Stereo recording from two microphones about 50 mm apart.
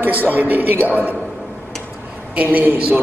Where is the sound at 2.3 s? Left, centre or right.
Right.